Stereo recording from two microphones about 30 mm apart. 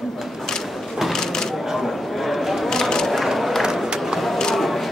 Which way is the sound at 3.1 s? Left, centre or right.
Centre.